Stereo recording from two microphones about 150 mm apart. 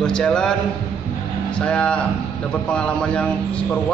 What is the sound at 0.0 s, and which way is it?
Speech, 5° left (ahead or behind).